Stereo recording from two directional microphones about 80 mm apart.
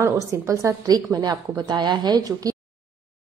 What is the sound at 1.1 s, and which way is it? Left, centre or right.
A woman's voice, right.